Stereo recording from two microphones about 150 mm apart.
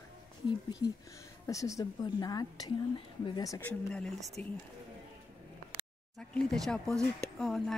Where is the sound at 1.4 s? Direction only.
20° left (ahead or behind).